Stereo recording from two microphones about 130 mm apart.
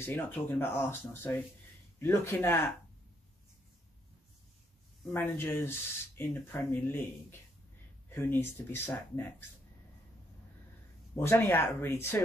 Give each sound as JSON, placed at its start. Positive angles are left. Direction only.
{"t": 0.0, "sound": "speech", "side_deg": 15}
{"t": 5.1, "sound": "speech", "side_deg": 15}
{"t": 11.1, "sound": "speech", "side_deg": 20}